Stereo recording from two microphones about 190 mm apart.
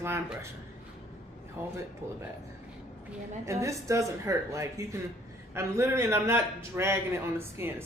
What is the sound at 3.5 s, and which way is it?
A man's voice, 15° right (ahead or behind).